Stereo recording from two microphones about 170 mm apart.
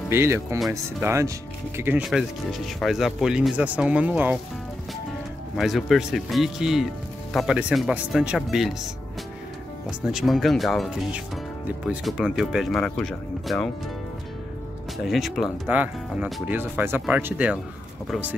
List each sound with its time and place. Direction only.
0.1 s speech: 15° right (ahead or behind)
2.0 s speech: centre (ahead or behind)
5.6 s speech: centre (ahead or behind)
10.1 s speech: centre (ahead or behind)
15.0 s speech: centre (ahead or behind)